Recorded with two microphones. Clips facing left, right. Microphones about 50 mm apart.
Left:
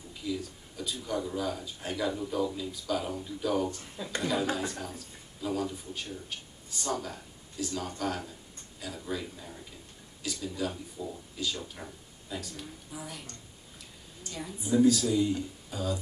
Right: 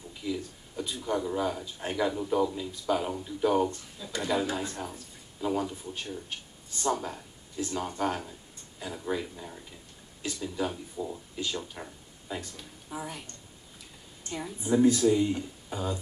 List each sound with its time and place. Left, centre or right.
0.3 s speech: right
4.0 s a sound: left
4.6 s speech: centre
14.2 s speech: right